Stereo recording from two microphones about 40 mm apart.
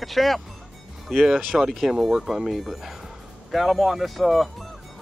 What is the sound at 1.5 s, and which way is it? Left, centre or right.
Speech, centre.